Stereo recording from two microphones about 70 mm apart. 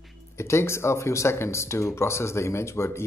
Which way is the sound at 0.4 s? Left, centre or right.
Left.